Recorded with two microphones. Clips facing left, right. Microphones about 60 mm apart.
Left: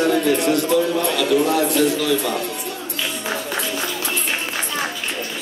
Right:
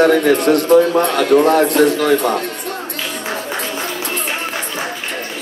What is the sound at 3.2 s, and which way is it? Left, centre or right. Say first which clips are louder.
Music: right 2 dB; right.